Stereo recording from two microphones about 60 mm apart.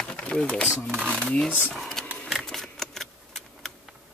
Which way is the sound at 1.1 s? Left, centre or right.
Centre.